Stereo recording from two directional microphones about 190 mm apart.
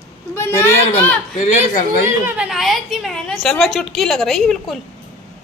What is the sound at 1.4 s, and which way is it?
Speech, 40° left (ahead or behind).